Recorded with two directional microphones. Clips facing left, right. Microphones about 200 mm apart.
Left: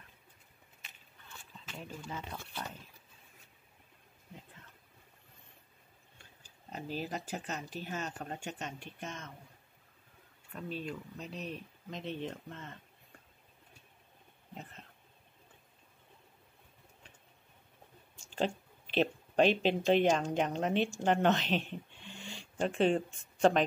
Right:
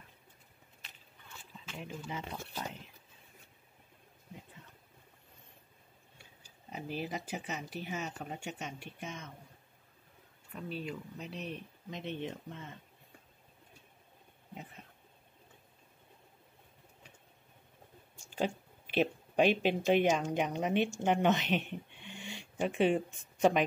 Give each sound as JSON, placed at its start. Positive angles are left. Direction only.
{"t": 1.8, "sound": "speech", "side_deg": -15}
{"t": 6.7, "sound": "speech", "side_deg": -10}
{"t": 10.5, "sound": "speech", "side_deg": -5}
{"t": 14.5, "sound": "a sound", "side_deg": -10}
{"t": 18.3, "sound": "speech", "side_deg": -10}